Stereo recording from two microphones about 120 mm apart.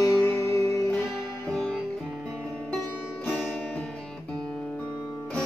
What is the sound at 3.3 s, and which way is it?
Music, 5° left (ahead or behind).